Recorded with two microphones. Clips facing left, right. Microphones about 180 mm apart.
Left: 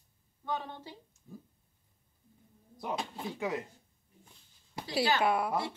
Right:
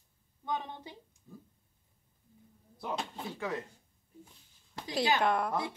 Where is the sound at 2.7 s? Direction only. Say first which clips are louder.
Left 1 dB; 10° left (ahead or behind).